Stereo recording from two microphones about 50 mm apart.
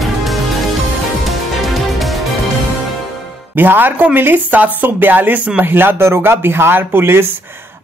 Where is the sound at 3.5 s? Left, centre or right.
Right.